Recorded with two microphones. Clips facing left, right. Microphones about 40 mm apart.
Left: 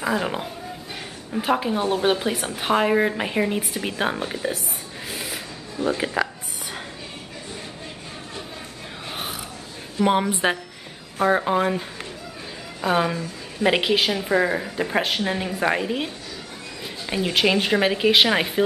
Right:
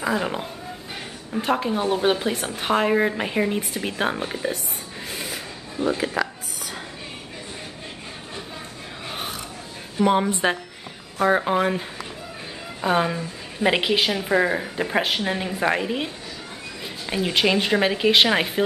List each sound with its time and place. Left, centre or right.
0.0 s a woman's voice: centre
5.1 s a sound: centre
5.9 s speech: centre
9.1 s a sound: centre
10.2 s a woman's voice: centre
12.8 s a woman's voice: centre